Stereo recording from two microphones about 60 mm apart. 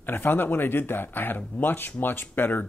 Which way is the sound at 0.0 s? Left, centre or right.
Left.